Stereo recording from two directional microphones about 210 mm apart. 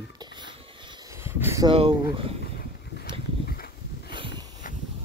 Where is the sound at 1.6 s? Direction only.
25° right (ahead or behind).